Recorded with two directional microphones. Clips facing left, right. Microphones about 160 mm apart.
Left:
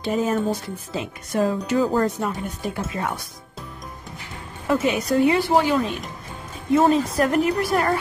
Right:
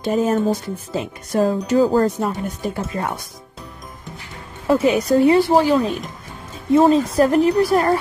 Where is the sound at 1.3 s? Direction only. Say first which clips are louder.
Right 4 dB; 35° right (ahead or behind).